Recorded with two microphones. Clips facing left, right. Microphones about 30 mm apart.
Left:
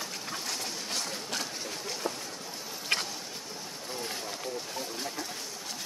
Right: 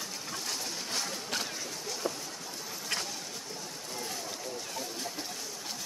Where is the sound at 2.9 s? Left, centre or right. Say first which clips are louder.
Left 5 dB; left.